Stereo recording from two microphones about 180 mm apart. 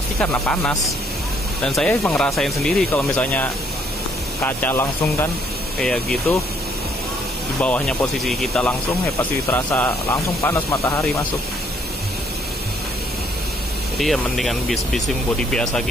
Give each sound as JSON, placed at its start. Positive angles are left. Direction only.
{"t": 0.2, "sound": "speech", "side_deg": 5}
{"t": 7.6, "sound": "speech", "side_deg": 5}
{"t": 13.9, "sound": "speech", "side_deg": 0}